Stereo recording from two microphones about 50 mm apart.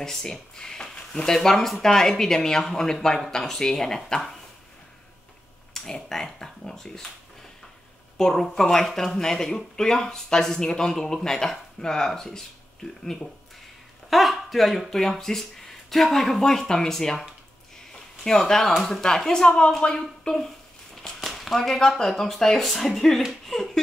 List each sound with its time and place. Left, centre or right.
0.0 s speech: centre
5.7 s speech: centre
8.2 s speech: centre
14.1 s speech: centre